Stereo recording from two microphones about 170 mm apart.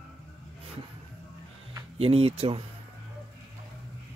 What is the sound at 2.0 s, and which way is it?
Speech, 35° right (ahead or behind).